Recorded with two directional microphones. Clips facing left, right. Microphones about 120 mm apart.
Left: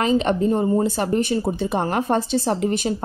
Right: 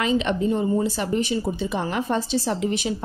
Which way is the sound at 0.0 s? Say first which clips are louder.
Left 3 dB; 40° left (ahead or behind).